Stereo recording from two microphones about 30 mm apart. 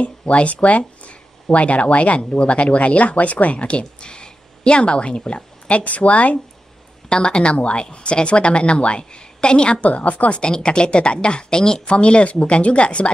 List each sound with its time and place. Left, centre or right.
0.0 s speech: left
3.5 s speech: left
5.7 s speech: left
7.1 s a woman's voice: left
7.5 s a woman's voice: left
9.8 s speech: left
10.3 s a woman's voice: left
11.9 s a woman's voice: left